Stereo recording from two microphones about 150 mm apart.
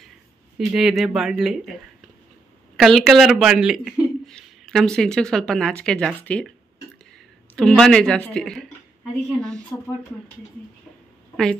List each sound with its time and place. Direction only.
0.6 s speech: 5° right (ahead or behind)
2.8 s speech: centre (ahead or behind)
7.5 s speech: 5° left (ahead or behind)
9.7 s speech: 15° left (ahead or behind)